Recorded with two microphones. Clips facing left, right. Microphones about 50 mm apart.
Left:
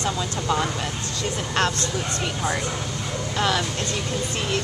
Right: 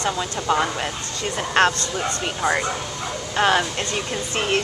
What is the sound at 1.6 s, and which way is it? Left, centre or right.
Speech, right.